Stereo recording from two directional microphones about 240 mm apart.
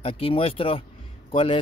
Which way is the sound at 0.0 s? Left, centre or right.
Left.